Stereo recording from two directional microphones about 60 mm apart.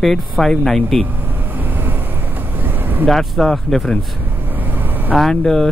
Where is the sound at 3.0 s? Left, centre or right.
Centre.